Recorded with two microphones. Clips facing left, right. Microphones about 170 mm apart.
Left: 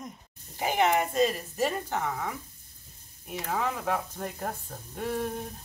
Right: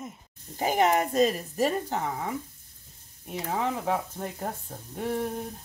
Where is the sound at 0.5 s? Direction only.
40° right (ahead or behind).